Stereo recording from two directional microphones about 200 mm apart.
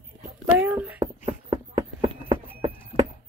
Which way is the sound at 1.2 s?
30° right (ahead or behind).